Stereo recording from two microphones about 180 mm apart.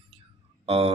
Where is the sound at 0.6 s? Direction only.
35° right (ahead or behind).